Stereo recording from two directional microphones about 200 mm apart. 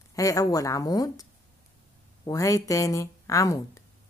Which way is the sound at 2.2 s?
15° left (ahead or behind).